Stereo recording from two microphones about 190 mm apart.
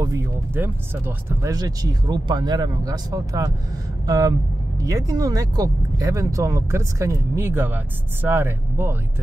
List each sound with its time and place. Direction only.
0.0 s speech: 15° right (ahead or behind)